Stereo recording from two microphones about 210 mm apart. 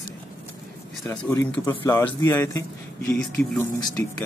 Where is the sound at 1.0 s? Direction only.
10° left (ahead or behind).